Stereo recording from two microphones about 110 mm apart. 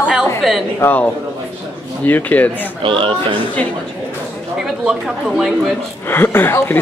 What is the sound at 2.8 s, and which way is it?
Speech, 50° right (ahead or behind).